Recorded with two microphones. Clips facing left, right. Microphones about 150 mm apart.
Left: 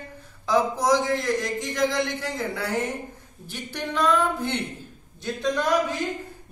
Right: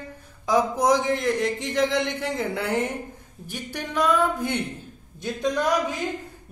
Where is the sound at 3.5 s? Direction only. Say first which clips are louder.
Left 1 dB; 10° right (ahead or behind).